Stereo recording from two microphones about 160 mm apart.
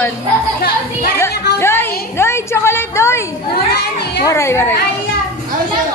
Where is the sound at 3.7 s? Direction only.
90° left.